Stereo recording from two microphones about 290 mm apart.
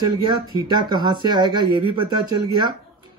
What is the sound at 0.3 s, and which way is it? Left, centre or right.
Speech, centre.